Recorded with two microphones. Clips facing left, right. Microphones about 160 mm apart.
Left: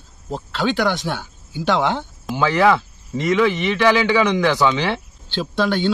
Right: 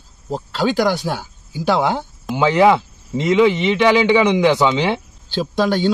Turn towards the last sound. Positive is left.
turn(degrees=-40)  # may be behind; listen again after turning